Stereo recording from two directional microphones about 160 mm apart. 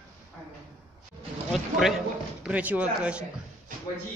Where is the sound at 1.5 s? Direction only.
Centre (ahead or behind).